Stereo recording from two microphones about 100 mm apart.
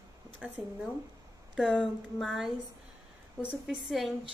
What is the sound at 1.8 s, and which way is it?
Speech, 5° right (ahead or behind).